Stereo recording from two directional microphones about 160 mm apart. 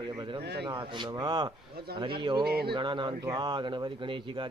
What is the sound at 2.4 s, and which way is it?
Speech, 80° right.